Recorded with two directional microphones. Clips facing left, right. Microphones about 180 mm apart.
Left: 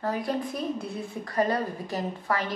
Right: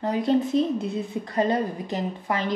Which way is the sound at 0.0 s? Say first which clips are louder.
Right 6 dB; 20° right (ahead or behind).